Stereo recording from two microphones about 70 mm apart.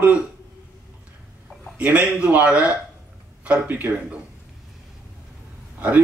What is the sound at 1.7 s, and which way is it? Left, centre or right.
Speech, centre.